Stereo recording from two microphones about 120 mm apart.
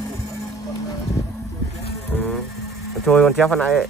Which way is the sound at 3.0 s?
5° left (ahead or behind).